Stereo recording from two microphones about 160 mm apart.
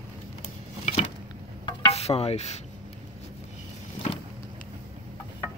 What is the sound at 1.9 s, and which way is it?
Stir, 40° left (ahead or behind).